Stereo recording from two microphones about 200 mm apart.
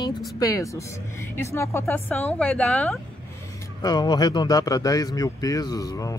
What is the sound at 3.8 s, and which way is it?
A man's voice, 20° left (ahead or behind).